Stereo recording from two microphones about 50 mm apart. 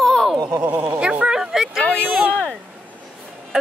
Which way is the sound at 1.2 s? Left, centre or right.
Centre.